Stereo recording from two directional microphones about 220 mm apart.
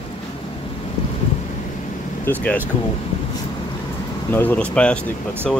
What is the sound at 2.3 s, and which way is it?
Speech, 10° left (ahead or behind).